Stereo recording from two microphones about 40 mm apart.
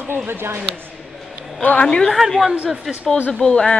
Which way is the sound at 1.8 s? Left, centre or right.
Left.